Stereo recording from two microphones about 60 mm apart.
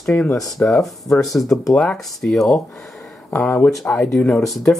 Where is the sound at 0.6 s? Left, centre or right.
Left.